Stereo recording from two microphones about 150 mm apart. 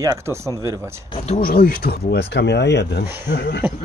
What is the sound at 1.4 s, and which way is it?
Speech, 90° left.